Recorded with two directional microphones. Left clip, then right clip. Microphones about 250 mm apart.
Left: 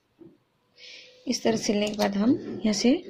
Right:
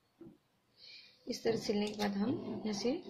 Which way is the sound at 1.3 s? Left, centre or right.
Left.